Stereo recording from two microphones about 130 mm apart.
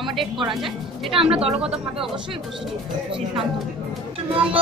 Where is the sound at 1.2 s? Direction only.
50° right (ahead or behind).